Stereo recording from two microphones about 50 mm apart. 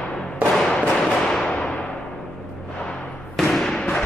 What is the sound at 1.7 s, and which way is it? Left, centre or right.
Timpani, left.